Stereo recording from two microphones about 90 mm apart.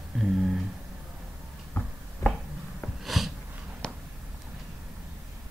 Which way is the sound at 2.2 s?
30° left (ahead or behind).